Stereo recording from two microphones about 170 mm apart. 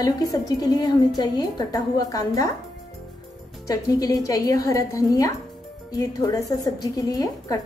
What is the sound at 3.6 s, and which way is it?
A woman's voice, 20° left (ahead or behind).